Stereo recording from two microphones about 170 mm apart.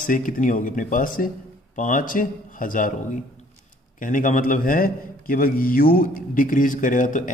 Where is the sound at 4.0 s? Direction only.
50° left (ahead or behind).